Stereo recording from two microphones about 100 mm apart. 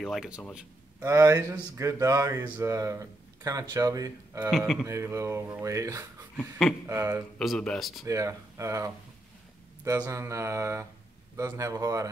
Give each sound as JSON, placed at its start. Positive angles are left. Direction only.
{"t": 0.0, "sound": "speech", "side_deg": 0}
{"t": 1.0, "sound": "speech", "side_deg": -30}
{"t": 4.5, "sound": "speech", "side_deg": 0}
{"t": 4.8, "sound": "speech", "side_deg": -30}
{"t": 6.9, "sound": "mantra", "side_deg": -30}
{"t": 7.3, "sound": "speech", "side_deg": 5}
{"t": 8.0, "sound": "speech", "side_deg": -35}
{"t": 9.8, "sound": "mantra", "side_deg": -30}
{"t": 11.3, "sound": "speech", "side_deg": -30}